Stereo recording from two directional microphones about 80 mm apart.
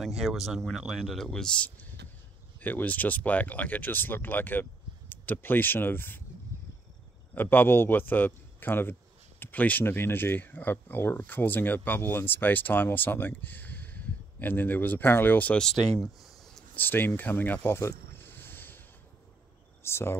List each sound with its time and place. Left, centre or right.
0.0 s speech: centre
2.6 s speech: left
7.3 s speech: left
15.6 s speech: centre
16.7 s speech: left
19.8 s speech: left